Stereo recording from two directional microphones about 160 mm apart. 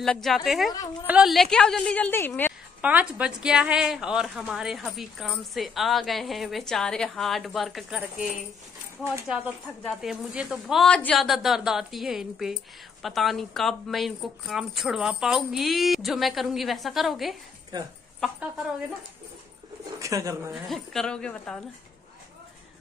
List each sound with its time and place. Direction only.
0.0 s a woman's voice: 5° left (ahead or behind)
2.8 s a woman's voice: 10° right (ahead or behind)
9.0 s speech: 15° right (ahead or behind)
9.8 s a woman's voice: 5° right (ahead or behind)
17.7 s speech: 25° right (ahead or behind)
18.2 s a woman's voice: centre (ahead or behind)
20.0 s speech: 20° right (ahead or behind)
20.5 s a woman's voice: centre (ahead or behind)